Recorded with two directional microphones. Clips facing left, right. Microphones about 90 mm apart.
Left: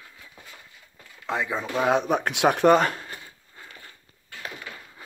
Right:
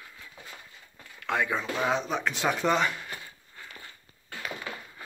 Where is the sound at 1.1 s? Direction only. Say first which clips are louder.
Even; 20° left (ahead or behind).